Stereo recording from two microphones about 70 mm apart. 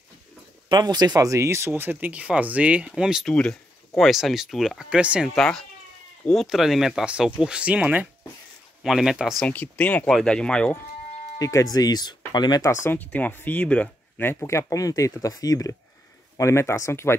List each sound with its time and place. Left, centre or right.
0.7 s speech: right; by 2.9 s centre
2.9 s speech: centre
3.3 s speech: centre
4.1 s speech: centre
4.8 s speech: centre
5.3 s speech: centre
6.4 s speech: centre; by 8.1 s right
8.8 s speech: centre
9.5 s speech: left
10.0 s speech: centre
11.3 s speech: left
12.9 s speech: left
14.2 s speech: left
16.3 s speech: left